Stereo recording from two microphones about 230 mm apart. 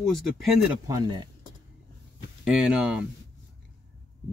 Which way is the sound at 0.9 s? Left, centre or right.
Centre.